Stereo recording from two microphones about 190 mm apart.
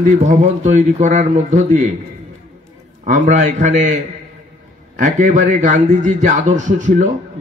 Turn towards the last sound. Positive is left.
turn(degrees=-40)  # may be behind; listen again after turning